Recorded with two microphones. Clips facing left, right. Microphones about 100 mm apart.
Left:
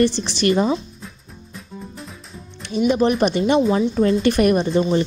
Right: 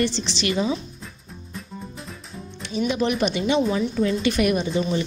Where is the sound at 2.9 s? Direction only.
40° left (ahead or behind).